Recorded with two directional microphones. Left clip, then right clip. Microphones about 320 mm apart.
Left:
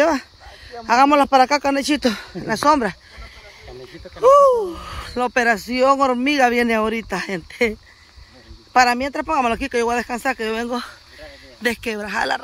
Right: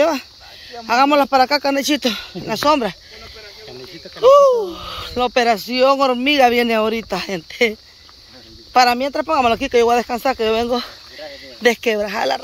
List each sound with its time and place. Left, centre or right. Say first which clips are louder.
0.7 s speech: even; centre
4.2 s speech: right 2 dB; centre
8.7 s speech: right 2 dB; centre